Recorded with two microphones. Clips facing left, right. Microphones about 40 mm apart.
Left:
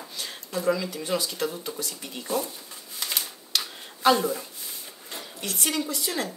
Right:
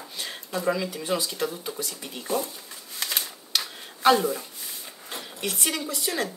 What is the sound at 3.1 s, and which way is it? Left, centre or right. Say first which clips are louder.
Typewriter: left 1 dB; centre.